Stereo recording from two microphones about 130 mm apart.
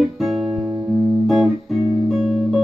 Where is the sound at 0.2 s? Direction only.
Centre (ahead or behind).